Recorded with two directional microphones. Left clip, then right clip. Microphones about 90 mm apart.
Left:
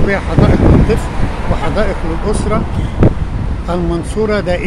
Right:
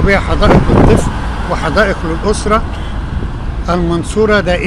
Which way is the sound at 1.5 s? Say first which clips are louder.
Right 5 dB; 20° right (ahead or behind).